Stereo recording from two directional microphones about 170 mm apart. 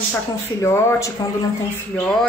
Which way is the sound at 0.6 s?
15° left (ahead or behind).